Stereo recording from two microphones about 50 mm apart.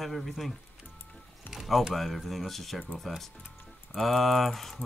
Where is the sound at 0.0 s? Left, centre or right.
Centre.